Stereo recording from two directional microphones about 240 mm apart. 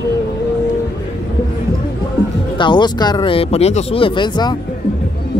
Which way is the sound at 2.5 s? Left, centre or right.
Centre.